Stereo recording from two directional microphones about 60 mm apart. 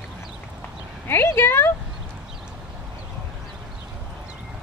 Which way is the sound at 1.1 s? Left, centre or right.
Left.